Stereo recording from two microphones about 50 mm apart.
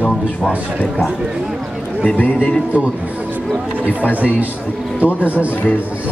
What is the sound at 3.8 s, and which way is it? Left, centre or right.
Speech, left.